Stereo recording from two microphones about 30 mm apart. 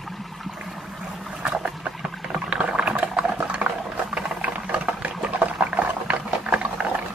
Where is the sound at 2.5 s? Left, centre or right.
Right.